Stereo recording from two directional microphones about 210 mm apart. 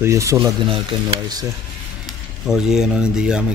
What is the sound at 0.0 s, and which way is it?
Speech, 15° right (ahead or behind).